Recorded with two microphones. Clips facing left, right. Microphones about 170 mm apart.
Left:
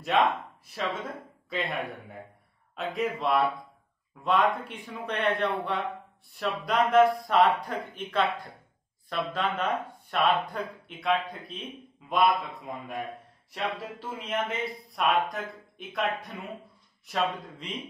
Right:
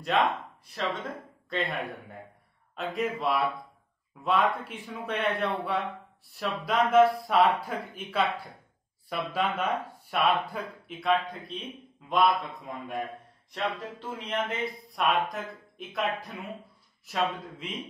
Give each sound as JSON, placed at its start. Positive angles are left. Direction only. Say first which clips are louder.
{"t": 0.0, "sound": "speech", "louder": "left 1 dB", "side_deg": 0}
{"t": 1.5, "sound": "speech", "louder": "even", "side_deg": 0}